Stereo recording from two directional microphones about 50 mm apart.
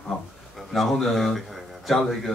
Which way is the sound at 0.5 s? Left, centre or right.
Centre.